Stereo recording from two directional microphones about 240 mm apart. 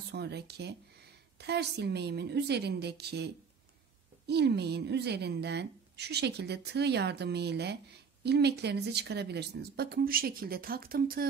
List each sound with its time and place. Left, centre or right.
0.1 s a woman's voice: right
4.3 s a woman's voice: right